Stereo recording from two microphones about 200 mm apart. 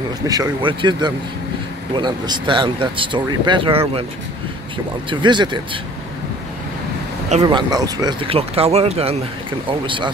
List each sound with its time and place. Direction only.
0.3 s speech: 20° right (ahead or behind)
5.2 s speech: 25° right (ahead or behind)
7.4 s speech: 20° right (ahead or behind)